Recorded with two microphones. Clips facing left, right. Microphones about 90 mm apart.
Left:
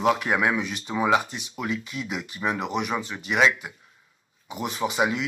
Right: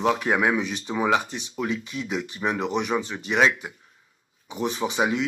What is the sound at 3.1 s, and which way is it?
Speech, 40° right (ahead or behind).